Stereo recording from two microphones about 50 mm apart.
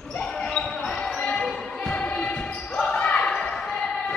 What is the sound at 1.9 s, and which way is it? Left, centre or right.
Music, left.